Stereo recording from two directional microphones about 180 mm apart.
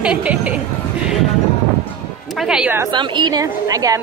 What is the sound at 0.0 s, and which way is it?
Speech, 5° right (ahead or behind).